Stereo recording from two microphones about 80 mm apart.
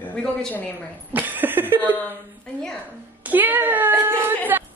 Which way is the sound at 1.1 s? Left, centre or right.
Right.